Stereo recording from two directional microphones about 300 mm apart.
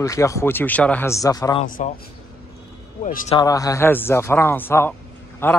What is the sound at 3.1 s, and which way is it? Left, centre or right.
Speech, left.